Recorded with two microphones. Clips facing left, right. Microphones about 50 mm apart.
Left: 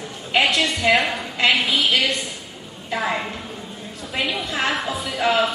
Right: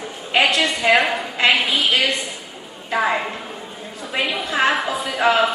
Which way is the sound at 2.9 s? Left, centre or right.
Centre.